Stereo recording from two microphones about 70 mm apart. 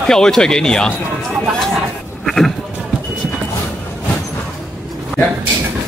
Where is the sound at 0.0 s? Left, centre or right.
Centre.